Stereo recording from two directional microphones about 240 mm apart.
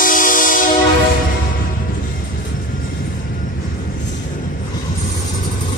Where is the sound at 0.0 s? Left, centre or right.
Left.